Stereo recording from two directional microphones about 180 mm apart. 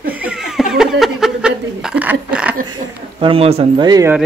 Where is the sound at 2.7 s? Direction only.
30° right (ahead or behind).